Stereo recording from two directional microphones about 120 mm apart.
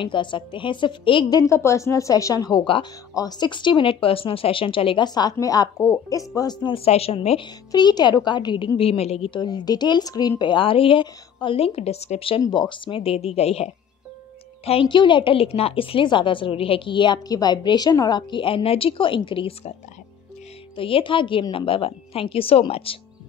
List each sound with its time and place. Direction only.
0.0 s a woman's voice: 40° left (ahead or behind)
1.5 s a woman's voice: 25° left (ahead or behind)
6.6 s a woman's voice: 50° left (ahead or behind)
9.3 s speech: 35° left (ahead or behind)
10.4 s a woman's voice: 45° left (ahead or behind)
12.4 s a woman's voice: 35° left (ahead or behind); by 14.9 s 55° left (ahead or behind)
14.9 s a woman's voice: 40° left (ahead or behind)
20.7 s a woman's voice: 45° left (ahead or behind)